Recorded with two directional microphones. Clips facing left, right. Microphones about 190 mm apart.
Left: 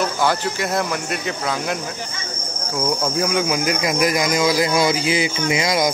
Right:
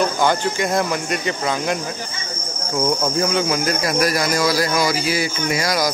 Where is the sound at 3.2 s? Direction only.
10° left (ahead or behind).